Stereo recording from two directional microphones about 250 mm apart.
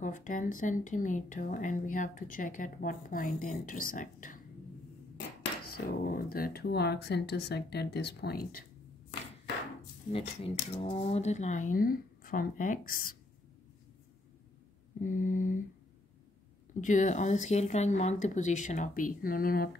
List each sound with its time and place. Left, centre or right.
0.0 s speech: left
5.9 s speech: left
10.1 s speech: left
15.0 s speech: left
16.8 s speech: left